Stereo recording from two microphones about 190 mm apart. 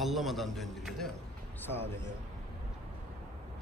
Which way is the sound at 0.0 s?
Centre (ahead or behind).